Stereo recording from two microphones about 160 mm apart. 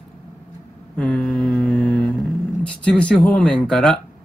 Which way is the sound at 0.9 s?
5° left (ahead or behind).